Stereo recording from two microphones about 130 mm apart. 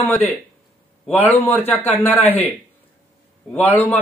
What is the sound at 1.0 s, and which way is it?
A man's voice, 15° left (ahead or behind).